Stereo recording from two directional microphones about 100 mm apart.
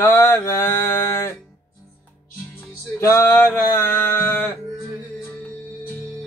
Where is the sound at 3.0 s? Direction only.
25° left (ahead or behind).